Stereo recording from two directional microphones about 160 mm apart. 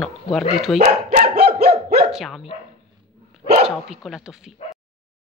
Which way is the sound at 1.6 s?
75° right (ahead or behind).